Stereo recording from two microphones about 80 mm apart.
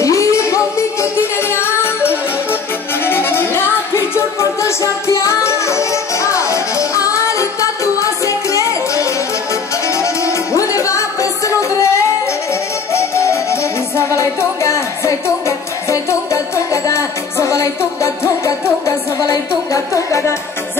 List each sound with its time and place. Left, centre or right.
0.0 s music: left
1.5 s music: left